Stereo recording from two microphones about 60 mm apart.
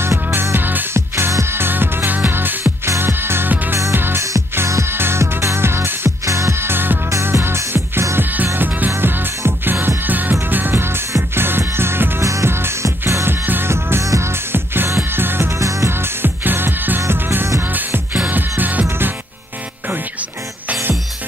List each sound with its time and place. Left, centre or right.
0.0 s music: right
0.9 s music: right
2.6 s music: right
4.6 s music: right
6.6 s music: right
8.2 s music: right
12.2 s music: right
12.4 s music: right
14.0 s music: right
14.3 s music: right
15.6 s music: right
15.9 s music: right